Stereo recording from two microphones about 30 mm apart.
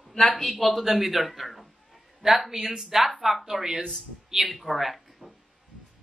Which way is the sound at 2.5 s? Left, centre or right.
Centre.